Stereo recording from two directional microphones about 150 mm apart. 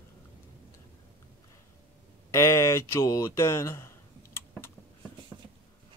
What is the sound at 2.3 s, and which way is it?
Speech, 20° left (ahead or behind).